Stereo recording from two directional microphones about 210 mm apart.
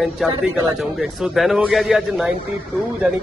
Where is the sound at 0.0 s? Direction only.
Centre (ahead or behind).